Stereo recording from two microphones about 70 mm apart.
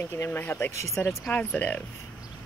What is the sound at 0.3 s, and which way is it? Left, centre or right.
Speech, left.